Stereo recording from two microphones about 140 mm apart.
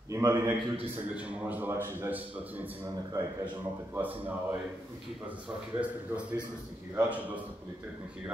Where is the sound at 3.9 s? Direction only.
10° right (ahead or behind).